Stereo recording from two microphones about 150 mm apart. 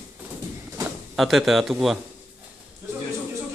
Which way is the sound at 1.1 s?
Centre (ahead or behind).